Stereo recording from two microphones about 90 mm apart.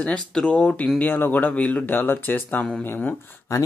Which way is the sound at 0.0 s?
10° left (ahead or behind).